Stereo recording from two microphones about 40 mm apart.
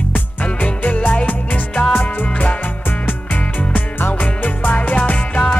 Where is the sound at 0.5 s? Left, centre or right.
Left.